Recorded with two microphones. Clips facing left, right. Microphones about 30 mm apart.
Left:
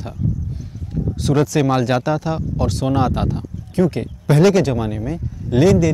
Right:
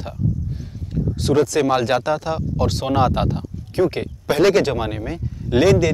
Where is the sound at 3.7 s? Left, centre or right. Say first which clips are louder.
Left 1 dB; right.